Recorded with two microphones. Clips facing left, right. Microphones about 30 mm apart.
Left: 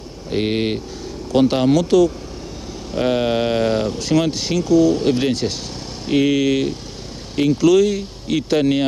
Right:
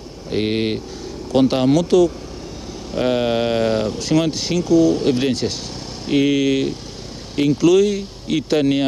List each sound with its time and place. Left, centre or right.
0.3 s speech: right